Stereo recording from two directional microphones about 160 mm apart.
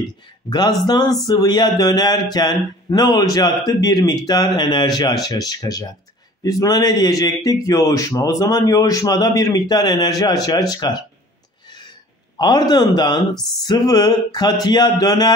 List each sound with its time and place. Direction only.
0.0 s speech: 25° left (ahead or behind)
12.4 s speech: 25° left (ahead or behind)